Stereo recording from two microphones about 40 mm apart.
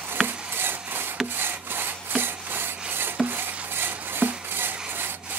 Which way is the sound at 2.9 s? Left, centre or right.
Right.